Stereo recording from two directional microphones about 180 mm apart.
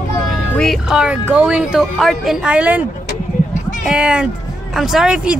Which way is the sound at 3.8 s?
5° right (ahead or behind).